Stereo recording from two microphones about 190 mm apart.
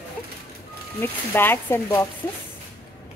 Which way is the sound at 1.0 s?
10° left (ahead or behind).